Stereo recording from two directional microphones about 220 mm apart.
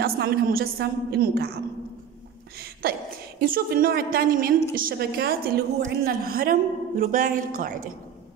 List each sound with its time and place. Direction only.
0.0 s a woman's voice: 45° right (ahead or behind)
2.6 s a woman's voice: 45° right (ahead or behind)